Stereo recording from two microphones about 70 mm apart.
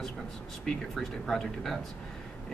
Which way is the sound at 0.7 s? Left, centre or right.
Centre.